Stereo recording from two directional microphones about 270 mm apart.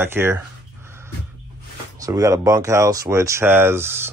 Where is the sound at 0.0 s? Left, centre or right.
Centre.